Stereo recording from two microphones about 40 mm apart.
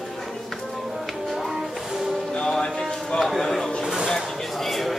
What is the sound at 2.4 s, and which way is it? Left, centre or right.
Music, centre.